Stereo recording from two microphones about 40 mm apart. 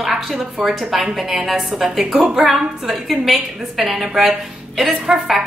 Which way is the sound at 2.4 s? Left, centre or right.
Centre.